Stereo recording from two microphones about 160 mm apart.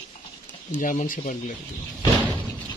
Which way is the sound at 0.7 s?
55° left (ahead or behind).